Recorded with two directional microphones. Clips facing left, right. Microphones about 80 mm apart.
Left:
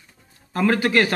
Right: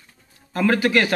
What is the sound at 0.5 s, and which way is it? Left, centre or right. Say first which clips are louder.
Speech: even; left.